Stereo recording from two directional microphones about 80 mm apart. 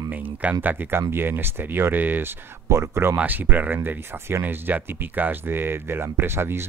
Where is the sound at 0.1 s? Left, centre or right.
Right.